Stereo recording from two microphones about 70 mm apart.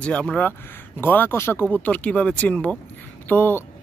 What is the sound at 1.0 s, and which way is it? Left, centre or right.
Speech, left.